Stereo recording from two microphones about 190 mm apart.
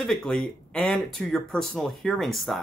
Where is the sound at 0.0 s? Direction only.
Centre (ahead or behind).